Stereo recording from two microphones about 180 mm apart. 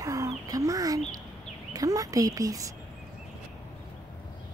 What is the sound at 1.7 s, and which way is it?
Speech, 20° right (ahead or behind).